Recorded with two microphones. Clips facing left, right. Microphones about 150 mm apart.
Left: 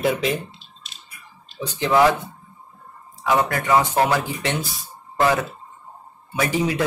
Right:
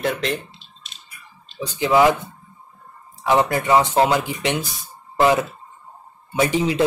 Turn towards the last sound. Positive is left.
turn(degrees=-25)  # may be behind; listen again after turning